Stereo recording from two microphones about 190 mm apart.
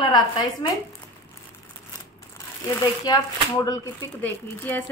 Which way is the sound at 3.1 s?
20° left (ahead or behind).